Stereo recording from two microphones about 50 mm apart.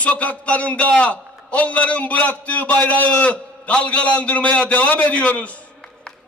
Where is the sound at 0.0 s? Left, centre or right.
Left.